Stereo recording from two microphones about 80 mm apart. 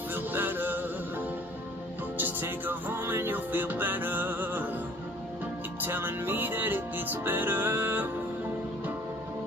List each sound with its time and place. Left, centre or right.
0.1 s music: right
2.1 s music: right
5.8 s music: right